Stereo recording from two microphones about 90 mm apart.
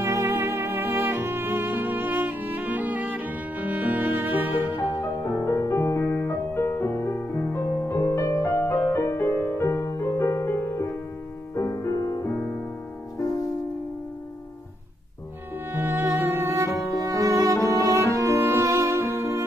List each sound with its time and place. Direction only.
0.0 s music: 30° right (ahead or behind)
4.9 s music: 25° left (ahead or behind); by 12.2 s 40° left (ahead or behind)
15.7 s music: 25° right (ahead or behind)